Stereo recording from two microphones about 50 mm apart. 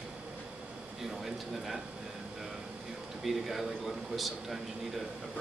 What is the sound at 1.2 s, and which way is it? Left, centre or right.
Speech, centre.